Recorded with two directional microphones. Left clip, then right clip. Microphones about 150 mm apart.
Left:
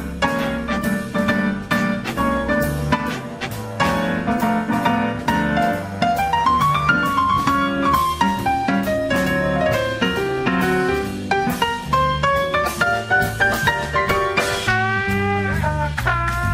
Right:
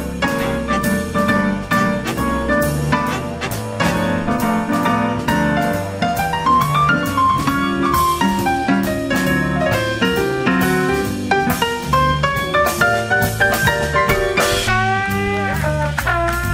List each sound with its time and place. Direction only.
1.1 s music: 45° left (ahead or behind)
4.3 s music: 40° left (ahead or behind)